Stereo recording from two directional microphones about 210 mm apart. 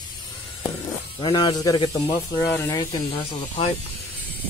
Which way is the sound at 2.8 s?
25° left (ahead or behind).